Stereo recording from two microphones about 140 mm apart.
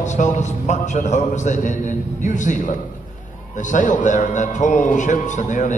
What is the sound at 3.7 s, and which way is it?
A man's voice, 65° left (ahead or behind).